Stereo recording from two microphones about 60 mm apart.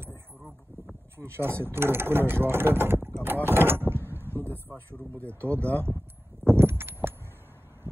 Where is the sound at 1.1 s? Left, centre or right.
Right.